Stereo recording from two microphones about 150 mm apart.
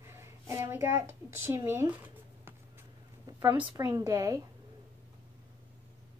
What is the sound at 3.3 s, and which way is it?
Speech, 10° right (ahead or behind).